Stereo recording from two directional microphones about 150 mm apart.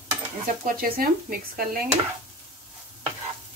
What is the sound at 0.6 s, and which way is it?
A woman's voice, 75° right (ahead or behind).